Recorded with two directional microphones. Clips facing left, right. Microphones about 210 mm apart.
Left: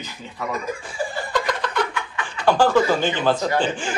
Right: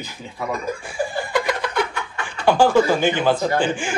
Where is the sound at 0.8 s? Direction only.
10° right (ahead or behind).